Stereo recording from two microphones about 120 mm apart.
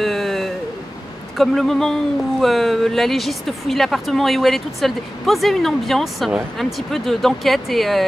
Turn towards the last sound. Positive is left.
turn(degrees=0)  # may be behind; listen again after turning